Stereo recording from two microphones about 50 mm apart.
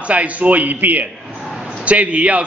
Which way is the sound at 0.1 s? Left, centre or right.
Right.